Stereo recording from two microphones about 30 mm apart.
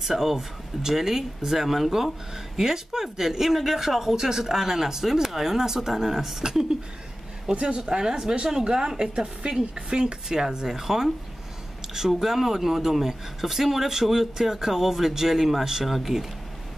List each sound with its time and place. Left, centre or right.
0.0 s speech: centre
7.7 s a woman's voice: right
10.2 s a woman's voice: centre
12.1 s speech: centre